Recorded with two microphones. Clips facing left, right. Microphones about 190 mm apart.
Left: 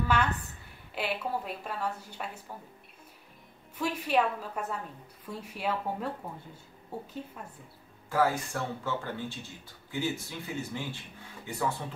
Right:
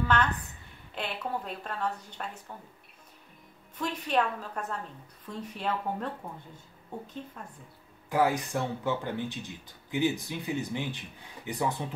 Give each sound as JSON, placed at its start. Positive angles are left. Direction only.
{"t": 0.9, "sound": "a woman's voice", "side_deg": 5}
{"t": 3.7, "sound": "a woman's voice", "side_deg": 10}
{"t": 8.1, "sound": "speech", "side_deg": -15}